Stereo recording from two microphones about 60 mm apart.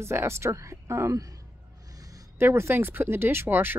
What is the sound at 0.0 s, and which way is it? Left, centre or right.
Speech, right.